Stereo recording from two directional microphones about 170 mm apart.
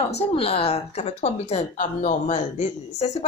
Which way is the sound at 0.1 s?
35° left (ahead or behind).